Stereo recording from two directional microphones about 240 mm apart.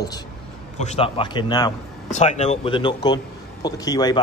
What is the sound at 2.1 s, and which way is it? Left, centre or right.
Speech, left.